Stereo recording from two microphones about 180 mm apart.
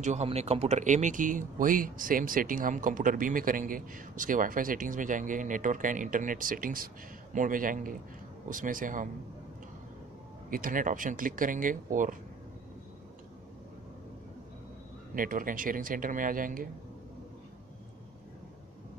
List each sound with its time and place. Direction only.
0.0 s speech: 40° right (ahead or behind)
10.5 s speech: 50° right (ahead or behind)
15.1 s speech: 50° right (ahead or behind)